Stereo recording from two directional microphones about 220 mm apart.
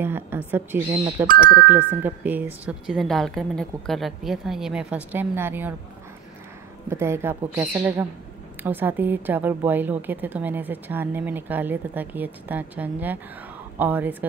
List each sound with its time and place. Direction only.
0.0 s a woman's voice: 10° right (ahead or behind)
1.2 s speech: 40° right (ahead or behind)
2.0 s speech: 10° right (ahead or behind)
6.9 s a woman's voice: 10° right (ahead or behind)